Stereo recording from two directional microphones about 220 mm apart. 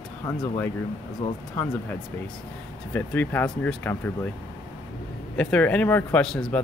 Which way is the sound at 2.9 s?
10° left (ahead or behind).